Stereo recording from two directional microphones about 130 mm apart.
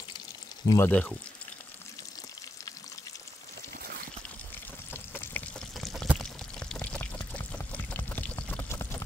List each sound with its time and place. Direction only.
0.7 s speech: 15° left (ahead or behind)
4.9 s pour: 15° left (ahead or behind)
5.8 s pour: centre (ahead or behind); by 9.0 s 20° left (ahead or behind)